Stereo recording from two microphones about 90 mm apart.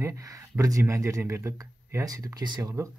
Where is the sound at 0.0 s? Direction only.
35° right (ahead or behind).